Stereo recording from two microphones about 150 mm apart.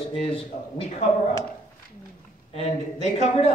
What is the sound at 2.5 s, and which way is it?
A man's voice, 50° left (ahead or behind).